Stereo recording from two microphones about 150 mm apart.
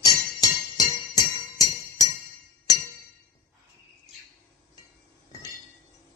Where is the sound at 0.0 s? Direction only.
25° left (ahead or behind).